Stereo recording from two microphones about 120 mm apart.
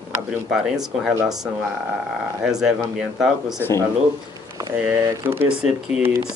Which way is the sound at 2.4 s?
5° right (ahead or behind).